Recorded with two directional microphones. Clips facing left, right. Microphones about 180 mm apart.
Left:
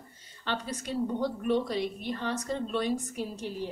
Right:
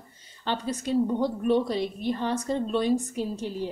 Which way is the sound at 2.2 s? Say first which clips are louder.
Right 3 dB; 30° right (ahead or behind).